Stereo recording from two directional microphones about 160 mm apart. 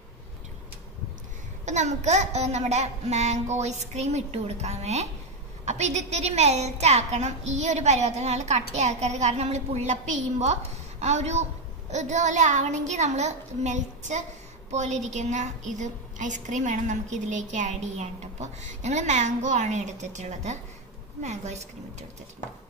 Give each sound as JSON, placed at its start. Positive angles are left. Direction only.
{"t": 1.7, "sound": "a woman's voice", "side_deg": -45}